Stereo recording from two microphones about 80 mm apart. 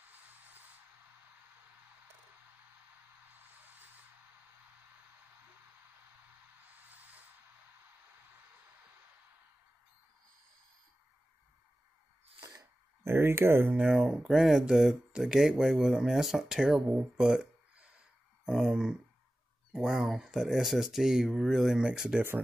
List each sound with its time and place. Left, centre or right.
3.5 s music: right
6.9 s music: right
13.0 s speech: right
13.7 s speech: centre